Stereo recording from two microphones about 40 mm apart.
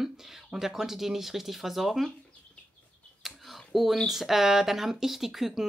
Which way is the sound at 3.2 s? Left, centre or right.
Centre.